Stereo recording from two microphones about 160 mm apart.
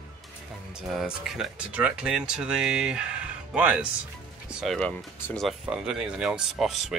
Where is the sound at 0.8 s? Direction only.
5° right (ahead or behind).